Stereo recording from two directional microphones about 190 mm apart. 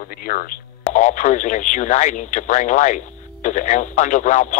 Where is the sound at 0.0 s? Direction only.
50° left (ahead or behind).